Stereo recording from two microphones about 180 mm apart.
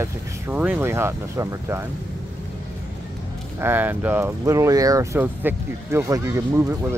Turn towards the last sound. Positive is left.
turn(degrees=-15)  # may be behind; listen again after turning